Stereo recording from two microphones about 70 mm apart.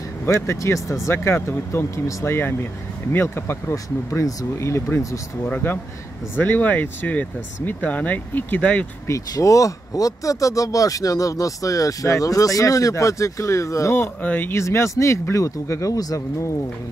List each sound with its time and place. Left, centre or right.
0.2 s speech: left
1.0 s speech: left
2.0 s speech: left
2.3 s speech: left
3.7 s speech: left
5.5 s speech: left
9.3 s speech: left
14.2 s speech: left
14.5 s speech: left